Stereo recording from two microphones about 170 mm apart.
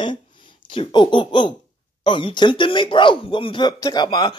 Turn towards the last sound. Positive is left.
turn(degrees=25)  # may be behind; listen again after turning